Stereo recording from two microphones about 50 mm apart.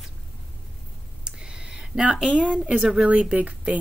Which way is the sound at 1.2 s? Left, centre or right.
Centre.